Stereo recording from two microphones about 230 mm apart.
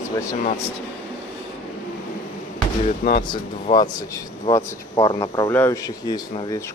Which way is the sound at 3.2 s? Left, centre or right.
Centre.